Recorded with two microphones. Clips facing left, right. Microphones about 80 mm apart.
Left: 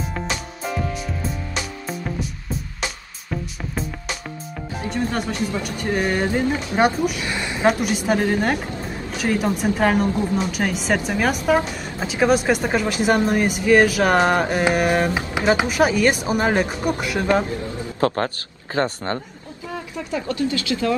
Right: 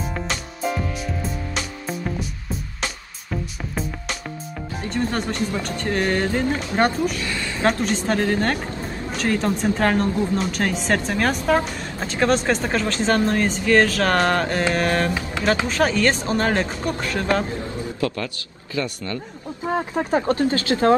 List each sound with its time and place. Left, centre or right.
0.0 s music: centre
4.8 s speech: centre
7.2 s a sound: centre
7.6 s speech: centre
18.0 s a man's voice: left
18.8 s a man's voice: left
19.7 s speech: right